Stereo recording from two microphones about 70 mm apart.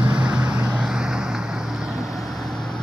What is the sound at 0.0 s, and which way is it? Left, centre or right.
Vehicle, centre.